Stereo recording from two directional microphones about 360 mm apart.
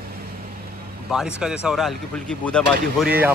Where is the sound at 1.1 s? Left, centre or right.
Centre.